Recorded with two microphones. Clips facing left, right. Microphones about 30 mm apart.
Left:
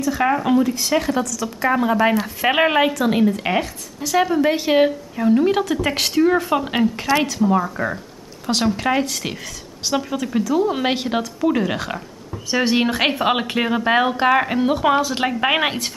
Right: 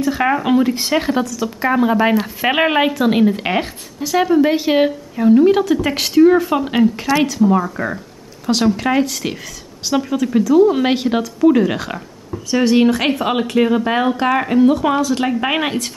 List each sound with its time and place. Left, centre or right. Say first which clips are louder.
0.2 s speech: right 1 dB; centre
1.7 s speech: right 3 dB; centre
4.0 s a woman's voice: right 3 dB; centre
12.4 s speech: right 5 dB; centre